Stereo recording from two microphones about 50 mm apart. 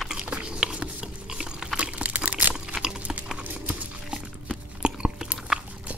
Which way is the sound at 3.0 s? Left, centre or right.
Right.